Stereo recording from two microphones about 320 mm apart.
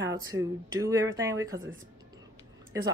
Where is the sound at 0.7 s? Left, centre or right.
Centre.